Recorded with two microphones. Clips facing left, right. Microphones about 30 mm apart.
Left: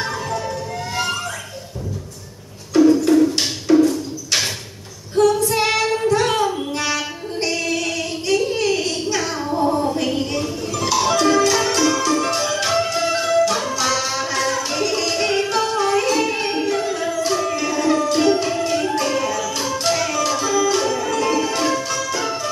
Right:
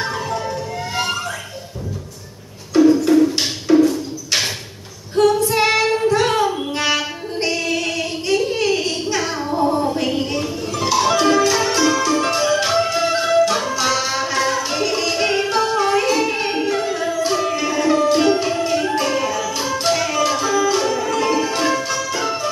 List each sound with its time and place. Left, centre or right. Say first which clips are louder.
0.3 s music: right 1 dB; centre
2.7 s a sound: right 1 dB; centre
5.1 s female singing: right 1 dB; right
5.4 s child singing: right 2 dB; centre
12.3 s music: right 3 dB; centre